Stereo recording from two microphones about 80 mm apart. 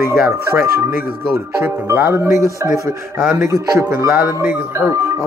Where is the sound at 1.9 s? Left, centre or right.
Right.